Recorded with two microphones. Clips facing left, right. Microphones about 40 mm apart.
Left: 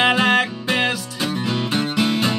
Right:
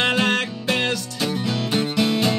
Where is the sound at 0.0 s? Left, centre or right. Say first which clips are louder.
Left 4 dB; centre.